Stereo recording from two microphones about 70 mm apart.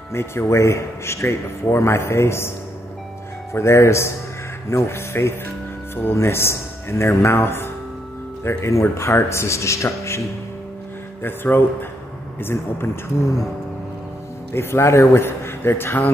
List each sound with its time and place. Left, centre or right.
0.1 s a man's voice: left
3.5 s a man's voice: left
11.2 s a man's voice: left
14.5 s a man's voice: left